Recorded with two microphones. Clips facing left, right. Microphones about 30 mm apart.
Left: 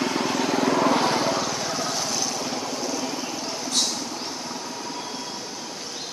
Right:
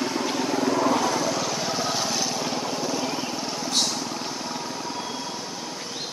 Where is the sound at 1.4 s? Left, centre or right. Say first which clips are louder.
Even; centre.